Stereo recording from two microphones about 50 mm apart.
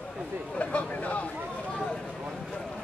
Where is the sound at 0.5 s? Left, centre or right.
Left.